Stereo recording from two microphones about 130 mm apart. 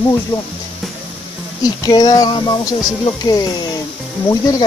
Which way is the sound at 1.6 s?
30° left (ahead or behind).